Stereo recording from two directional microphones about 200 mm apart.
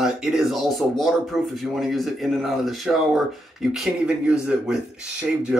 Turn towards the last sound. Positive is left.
turn(degrees=-5)  # may be behind; listen again after turning